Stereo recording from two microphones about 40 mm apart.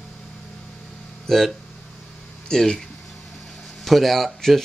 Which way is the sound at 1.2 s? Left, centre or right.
Centre.